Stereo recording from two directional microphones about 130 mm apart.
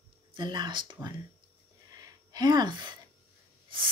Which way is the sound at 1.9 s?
30° right (ahead or behind).